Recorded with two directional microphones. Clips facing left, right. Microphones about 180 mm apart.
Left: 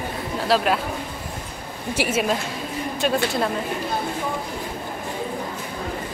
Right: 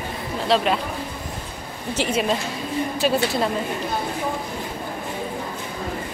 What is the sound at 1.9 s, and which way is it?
A woman's voice, 10° left (ahead or behind).